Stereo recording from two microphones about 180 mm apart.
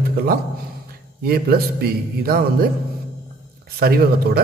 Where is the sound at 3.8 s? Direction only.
55° right (ahead or behind).